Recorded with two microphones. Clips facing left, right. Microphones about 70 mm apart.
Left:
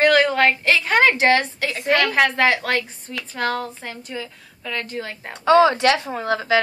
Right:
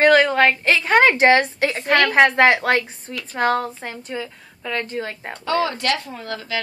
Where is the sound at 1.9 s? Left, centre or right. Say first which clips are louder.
Right 1 dB; right.